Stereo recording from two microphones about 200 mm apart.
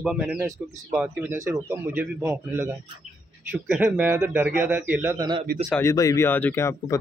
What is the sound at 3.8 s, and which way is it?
Speech, 10° right (ahead or behind).